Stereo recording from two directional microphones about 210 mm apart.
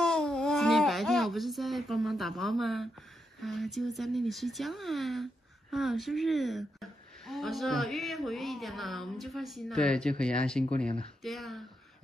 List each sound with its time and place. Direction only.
0.0 s speech: centre (ahead or behind)